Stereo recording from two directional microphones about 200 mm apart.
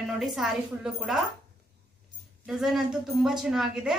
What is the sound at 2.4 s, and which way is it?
A woman's voice, centre (ahead or behind).